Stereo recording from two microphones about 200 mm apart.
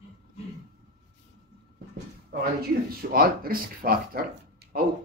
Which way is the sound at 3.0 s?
45° right (ahead or behind).